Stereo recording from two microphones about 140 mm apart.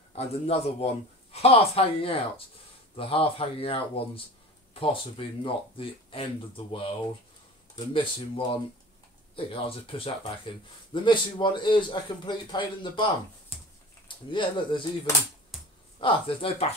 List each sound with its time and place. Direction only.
0.1 s a man's voice: 45° left (ahead or behind)
16.0 s a man's voice: 40° left (ahead or behind)